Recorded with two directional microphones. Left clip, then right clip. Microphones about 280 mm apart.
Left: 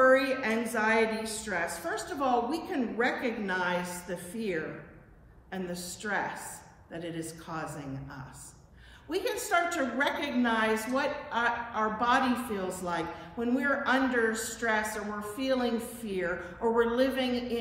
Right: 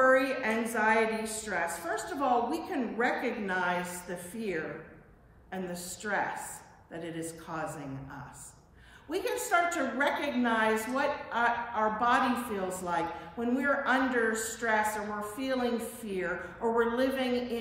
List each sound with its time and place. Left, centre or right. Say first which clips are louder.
0.0 s a woman's voice: left 1 dB; centre
9.1 s a woman's voice: even; centre